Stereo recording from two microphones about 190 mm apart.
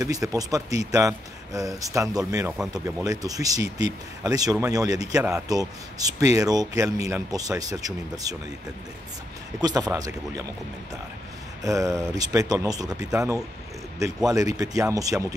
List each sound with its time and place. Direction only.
0.0 s speech: 20° right (ahead or behind)
9.6 s speech: 20° right (ahead or behind)
11.6 s speech: 15° right (ahead or behind)